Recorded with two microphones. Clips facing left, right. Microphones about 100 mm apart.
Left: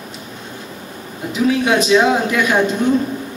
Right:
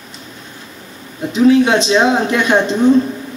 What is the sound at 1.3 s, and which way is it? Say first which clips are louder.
Speech: right 5 dB; 25° right (ahead or behind).